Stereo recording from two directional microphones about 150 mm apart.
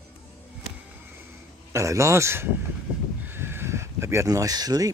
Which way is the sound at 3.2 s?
15° right (ahead or behind).